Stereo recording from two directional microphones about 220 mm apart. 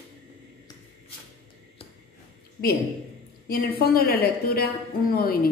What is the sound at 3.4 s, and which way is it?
A woman's voice, 40° left (ahead or behind).